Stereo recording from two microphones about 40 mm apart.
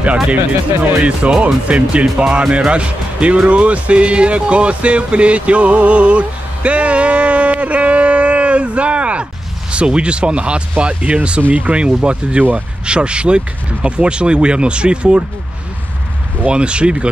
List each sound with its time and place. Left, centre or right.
0.0 s speech: right
1.4 s speech: right
16.4 s speech: right